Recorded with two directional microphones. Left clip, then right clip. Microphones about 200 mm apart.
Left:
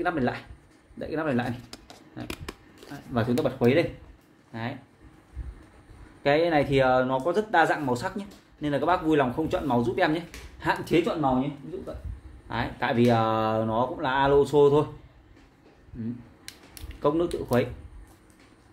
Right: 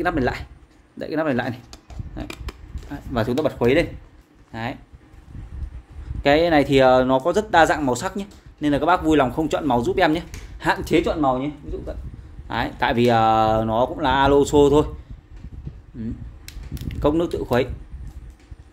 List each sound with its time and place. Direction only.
0.0 s speech: 50° right (ahead or behind)
6.2 s speech: 50° right (ahead or behind)
12.4 s speech: 50° right (ahead or behind)
17.0 s speech: 50° right (ahead or behind)